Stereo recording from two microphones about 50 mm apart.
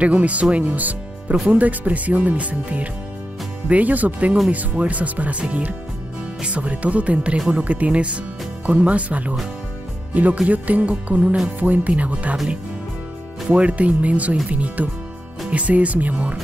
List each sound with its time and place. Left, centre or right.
0.0 s speech: right
7.3 s speech: centre
7.6 s speech: right
13.5 s speech: right